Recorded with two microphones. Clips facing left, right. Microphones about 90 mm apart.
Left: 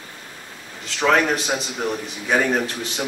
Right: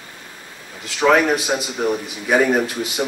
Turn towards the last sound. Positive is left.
turn(degrees=-5)  # may be behind; listen again after turning